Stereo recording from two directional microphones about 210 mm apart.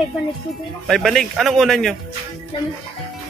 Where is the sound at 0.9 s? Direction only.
Centre (ahead or behind).